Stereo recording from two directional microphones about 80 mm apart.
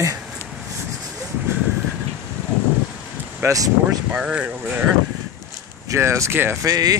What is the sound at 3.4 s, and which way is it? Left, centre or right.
Speech, right.